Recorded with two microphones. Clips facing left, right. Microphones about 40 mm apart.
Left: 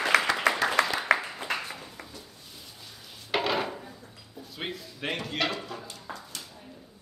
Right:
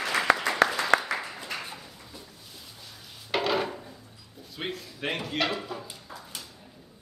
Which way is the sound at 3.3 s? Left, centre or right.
Centre.